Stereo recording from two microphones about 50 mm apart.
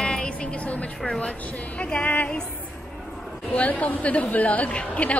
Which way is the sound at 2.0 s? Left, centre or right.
Left.